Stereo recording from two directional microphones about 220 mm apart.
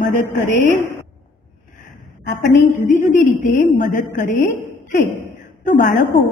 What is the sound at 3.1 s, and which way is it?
A woman's voice, 35° left (ahead or behind).